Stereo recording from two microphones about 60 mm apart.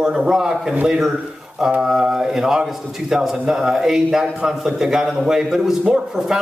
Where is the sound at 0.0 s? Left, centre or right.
Centre.